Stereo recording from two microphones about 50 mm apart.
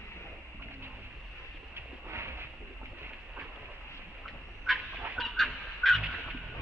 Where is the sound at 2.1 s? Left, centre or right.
Right.